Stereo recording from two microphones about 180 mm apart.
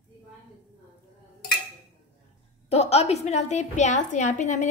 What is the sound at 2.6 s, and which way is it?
A woman's voice, 35° left (ahead or behind).